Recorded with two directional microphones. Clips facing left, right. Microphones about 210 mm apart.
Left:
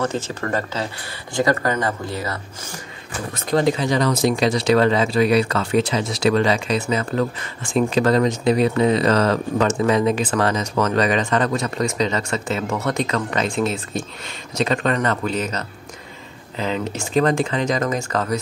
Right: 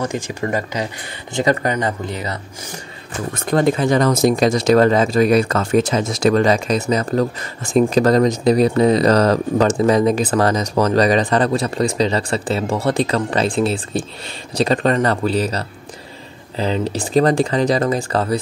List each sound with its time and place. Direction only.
0.0 s speech: 15° right (ahead or behind)
3.4 s speech: 50° right (ahead or behind); by 18.4 s 30° right (ahead or behind)